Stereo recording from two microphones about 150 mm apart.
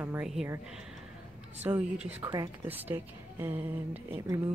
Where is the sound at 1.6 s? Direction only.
10° right (ahead or behind).